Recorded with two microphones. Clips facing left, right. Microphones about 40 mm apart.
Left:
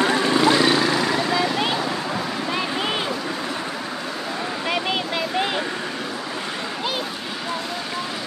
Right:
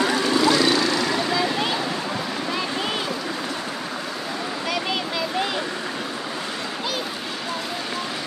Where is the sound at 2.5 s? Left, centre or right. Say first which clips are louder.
Left 2 dB; centre.